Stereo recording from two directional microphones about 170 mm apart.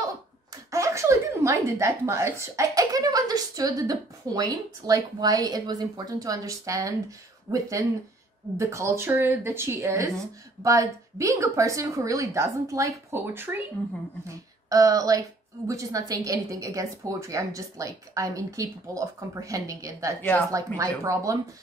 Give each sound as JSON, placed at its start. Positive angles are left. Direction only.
{"t": 0.7, "sound": "a woman's voice", "side_deg": -20}
{"t": 20.2, "sound": "speech", "side_deg": 10}
{"t": 20.5, "sound": "speech", "side_deg": -20}